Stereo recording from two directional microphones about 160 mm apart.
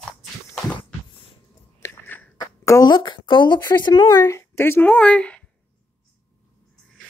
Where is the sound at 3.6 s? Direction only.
25° left (ahead or behind); by 5.4 s 5° left (ahead or behind).